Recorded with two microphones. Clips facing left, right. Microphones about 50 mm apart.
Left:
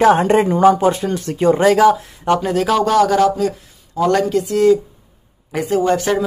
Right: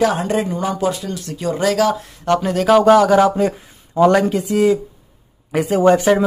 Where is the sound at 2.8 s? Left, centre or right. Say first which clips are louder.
Right 1 dB; centre.